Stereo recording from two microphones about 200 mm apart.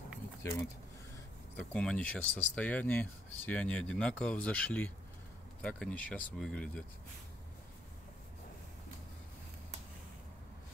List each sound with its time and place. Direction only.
0.4 s speech: 15° left (ahead or behind)